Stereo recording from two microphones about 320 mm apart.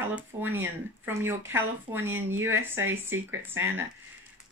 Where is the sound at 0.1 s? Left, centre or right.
Centre.